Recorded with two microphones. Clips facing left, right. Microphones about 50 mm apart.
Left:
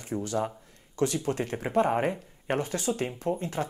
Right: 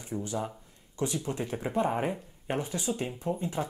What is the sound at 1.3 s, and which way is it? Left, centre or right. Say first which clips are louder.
Speech: left 4 dB; left.